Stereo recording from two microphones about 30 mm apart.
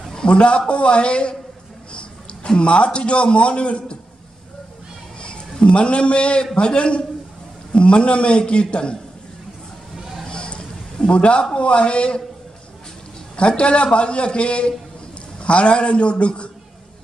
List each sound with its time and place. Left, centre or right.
0.3 s a man's voice: left
5.2 s a man's voice: left
10.2 s a sound: left
11.5 s a man's voice: left
13.4 s a man's voice: left